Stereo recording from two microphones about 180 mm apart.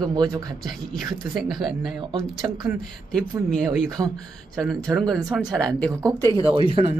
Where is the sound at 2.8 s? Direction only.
5° left (ahead or behind).